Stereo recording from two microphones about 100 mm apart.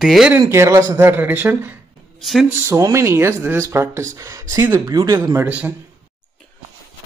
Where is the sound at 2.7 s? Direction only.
30° right (ahead or behind).